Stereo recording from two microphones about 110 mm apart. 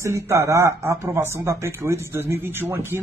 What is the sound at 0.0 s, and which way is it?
Speech, 25° right (ahead or behind).